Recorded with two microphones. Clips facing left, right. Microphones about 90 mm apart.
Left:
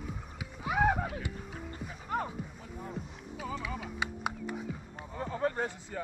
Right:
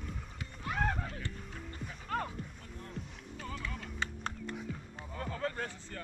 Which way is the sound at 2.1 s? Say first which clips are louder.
Left 2 dB; 15° left (ahead or behind).